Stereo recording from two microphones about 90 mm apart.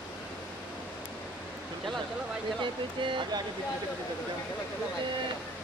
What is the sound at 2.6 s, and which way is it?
Speech, 65° right (ahead or behind).